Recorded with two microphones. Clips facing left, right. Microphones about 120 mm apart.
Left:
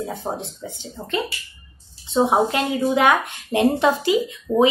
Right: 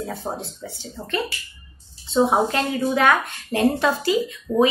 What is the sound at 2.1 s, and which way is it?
A woman's voice, 20° left (ahead or behind).